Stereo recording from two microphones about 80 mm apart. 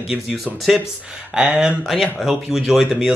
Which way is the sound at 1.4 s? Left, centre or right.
Centre.